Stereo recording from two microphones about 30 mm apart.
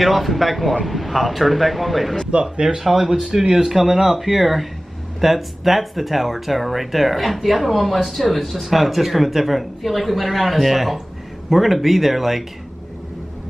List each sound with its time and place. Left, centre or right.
0.0 s speech: centre
3.3 s speech: right
3.7 s speech: centre